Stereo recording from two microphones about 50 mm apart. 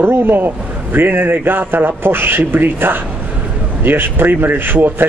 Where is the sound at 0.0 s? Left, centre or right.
Right.